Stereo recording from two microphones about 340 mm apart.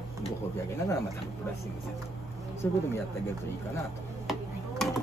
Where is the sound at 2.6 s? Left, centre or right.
Centre.